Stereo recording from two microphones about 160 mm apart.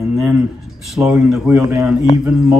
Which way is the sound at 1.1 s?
5° right (ahead or behind).